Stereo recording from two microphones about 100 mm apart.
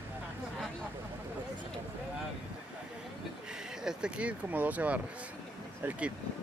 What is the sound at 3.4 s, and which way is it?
Vehicle, 5° right (ahead or behind).